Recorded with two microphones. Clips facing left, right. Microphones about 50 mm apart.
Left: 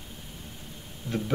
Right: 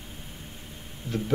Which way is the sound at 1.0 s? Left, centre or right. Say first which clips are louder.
Even; right.